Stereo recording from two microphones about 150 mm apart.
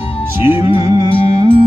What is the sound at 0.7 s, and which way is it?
Music, 25° right (ahead or behind).